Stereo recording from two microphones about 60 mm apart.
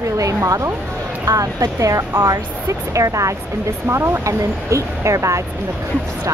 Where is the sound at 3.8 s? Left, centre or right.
Right.